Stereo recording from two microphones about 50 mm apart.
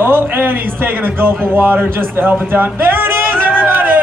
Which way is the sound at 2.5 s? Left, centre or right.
Right.